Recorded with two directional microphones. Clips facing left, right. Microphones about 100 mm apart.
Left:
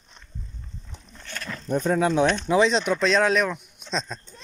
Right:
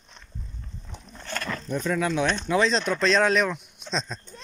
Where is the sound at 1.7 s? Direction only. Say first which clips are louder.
Left 5 dB; 35° left (ahead or behind).